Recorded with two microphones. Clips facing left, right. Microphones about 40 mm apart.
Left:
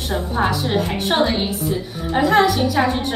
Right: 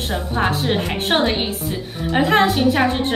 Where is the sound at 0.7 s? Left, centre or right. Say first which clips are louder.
Left 1 dB; right.